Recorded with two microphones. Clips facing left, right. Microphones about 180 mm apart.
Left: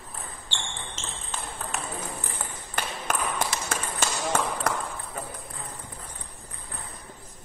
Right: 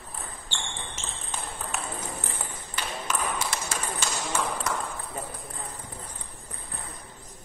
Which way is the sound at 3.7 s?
55° left (ahead or behind).